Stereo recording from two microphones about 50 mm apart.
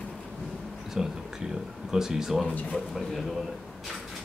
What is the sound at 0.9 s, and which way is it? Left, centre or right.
A man's voice, centre.